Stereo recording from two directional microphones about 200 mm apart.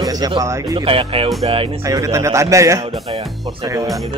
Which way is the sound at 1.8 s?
15° right (ahead or behind).